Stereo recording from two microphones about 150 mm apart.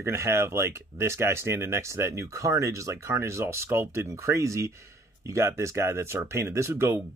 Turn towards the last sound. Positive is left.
turn(degrees=-20)  # may be behind; listen again after turning